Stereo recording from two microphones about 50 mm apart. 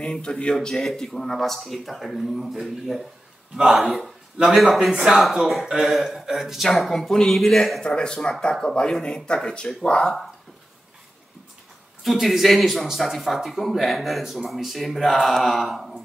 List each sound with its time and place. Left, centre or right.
0.0 s speech: centre
0.7 s speech: centre
4.4 s a man's voice: right
4.8 s speech: centre
12.0 s speech: centre